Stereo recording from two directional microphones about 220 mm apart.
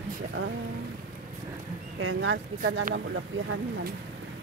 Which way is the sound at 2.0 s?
60° right (ahead or behind).